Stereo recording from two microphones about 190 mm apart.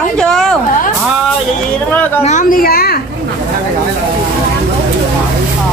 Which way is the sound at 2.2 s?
45° left (ahead or behind).